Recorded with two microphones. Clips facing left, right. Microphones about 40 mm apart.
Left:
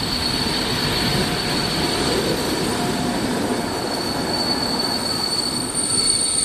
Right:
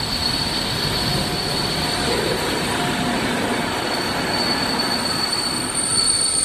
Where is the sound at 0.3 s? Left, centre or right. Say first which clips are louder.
Left 1 dB; centre.